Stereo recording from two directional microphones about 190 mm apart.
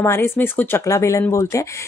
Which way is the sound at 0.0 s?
15° left (ahead or behind).